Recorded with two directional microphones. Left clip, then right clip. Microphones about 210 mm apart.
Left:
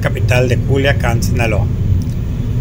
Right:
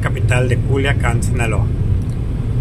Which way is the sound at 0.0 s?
5° left (ahead or behind).